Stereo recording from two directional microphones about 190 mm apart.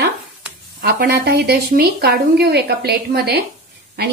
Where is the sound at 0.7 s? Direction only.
50° right (ahead or behind).